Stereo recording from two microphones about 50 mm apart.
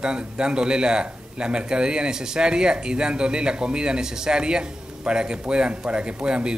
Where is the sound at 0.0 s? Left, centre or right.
Centre.